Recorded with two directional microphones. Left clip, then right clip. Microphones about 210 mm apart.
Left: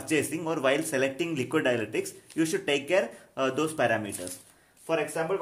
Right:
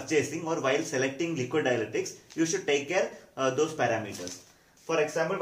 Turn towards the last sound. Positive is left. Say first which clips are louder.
# right 1 dB
turn(degrees=55)  # may be behind; listen again after turning